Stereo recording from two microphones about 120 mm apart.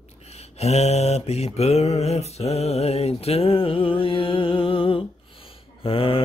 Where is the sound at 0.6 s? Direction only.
65° left (ahead or behind).